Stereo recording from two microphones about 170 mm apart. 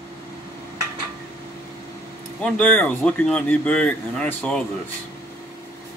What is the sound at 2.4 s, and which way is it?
Speech, 5° left (ahead or behind).